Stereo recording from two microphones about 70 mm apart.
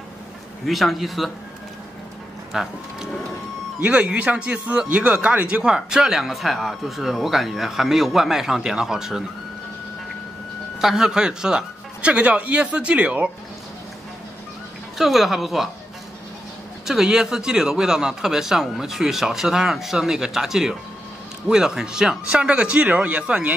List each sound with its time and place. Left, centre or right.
0.7 s speech: centre
2.5 s speech: centre
3.8 s a man's voice: centre
10.8 s a man's voice: centre
15.0 s speech: centre
16.8 s a man's voice: centre